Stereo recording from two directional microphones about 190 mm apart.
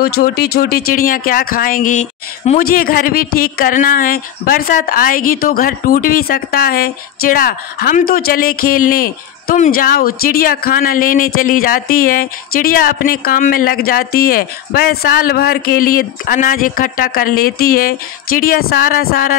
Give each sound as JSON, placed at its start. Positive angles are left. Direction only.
{"t": 0.0, "sound": "speech", "side_deg": 55}
{"t": 2.6, "sound": "speech", "side_deg": 50}